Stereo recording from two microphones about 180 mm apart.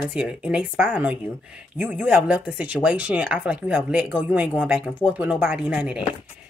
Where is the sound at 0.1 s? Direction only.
5° right (ahead or behind).